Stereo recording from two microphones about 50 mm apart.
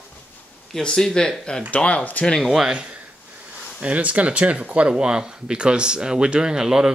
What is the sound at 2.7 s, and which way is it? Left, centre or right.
Speech, right.